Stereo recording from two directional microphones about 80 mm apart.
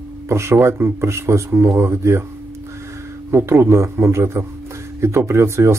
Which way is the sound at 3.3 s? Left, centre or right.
Right.